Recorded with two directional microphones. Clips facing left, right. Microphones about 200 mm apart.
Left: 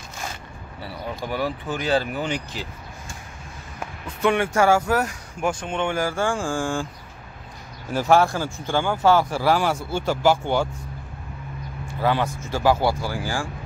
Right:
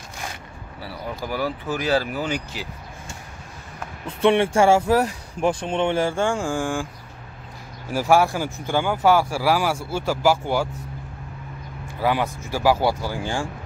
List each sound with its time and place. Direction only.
0.8 s speech: centre (ahead or behind)
1.8 s speech: 25° left (ahead or behind)
2.1 s speech: 5° right (ahead or behind)
4.2 s speech: 30° right (ahead or behind)
7.9 s speech: 10° right (ahead or behind)
11.9 s speech: 15° right (ahead or behind)